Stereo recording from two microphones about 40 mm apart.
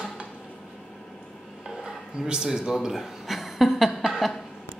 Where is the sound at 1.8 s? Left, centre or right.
Centre.